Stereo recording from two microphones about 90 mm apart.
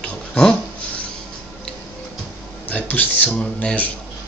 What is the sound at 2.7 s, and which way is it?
Speech, 20° left (ahead or behind).